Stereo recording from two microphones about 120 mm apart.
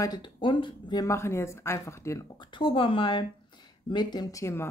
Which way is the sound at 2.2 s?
40° left (ahead or behind).